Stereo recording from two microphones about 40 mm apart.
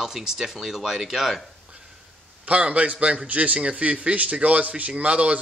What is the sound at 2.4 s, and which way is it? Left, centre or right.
Speech, right.